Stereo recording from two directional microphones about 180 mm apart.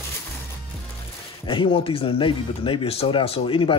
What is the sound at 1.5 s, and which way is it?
Speech, 30° left (ahead or behind).